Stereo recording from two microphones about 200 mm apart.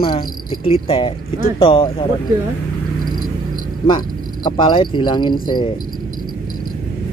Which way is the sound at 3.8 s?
20° left (ahead or behind).